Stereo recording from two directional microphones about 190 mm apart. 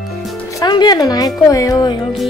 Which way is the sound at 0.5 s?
20° left (ahead or behind).